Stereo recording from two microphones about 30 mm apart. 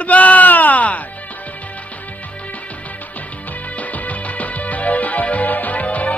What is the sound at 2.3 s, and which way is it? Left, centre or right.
Music, left.